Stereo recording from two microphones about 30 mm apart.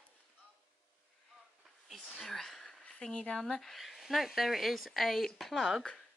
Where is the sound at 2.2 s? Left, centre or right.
Centre.